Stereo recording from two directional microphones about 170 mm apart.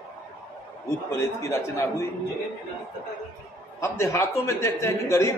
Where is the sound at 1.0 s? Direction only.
15° left (ahead or behind).